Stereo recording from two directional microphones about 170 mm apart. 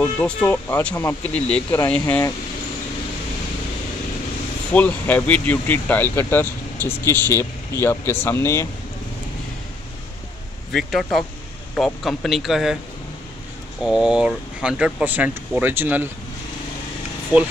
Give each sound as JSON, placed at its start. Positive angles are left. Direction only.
{"t": 0.0, "sound": "speech", "side_deg": 10}
{"t": 4.7, "sound": "speech", "side_deg": 10}
{"t": 10.7, "sound": "a man's voice", "side_deg": 0}
{"t": 13.8, "sound": "speech", "side_deg": -5}
{"t": 17.3, "sound": "speech", "side_deg": -10}